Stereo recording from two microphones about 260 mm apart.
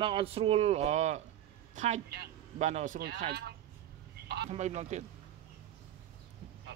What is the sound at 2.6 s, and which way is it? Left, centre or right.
Speech, right.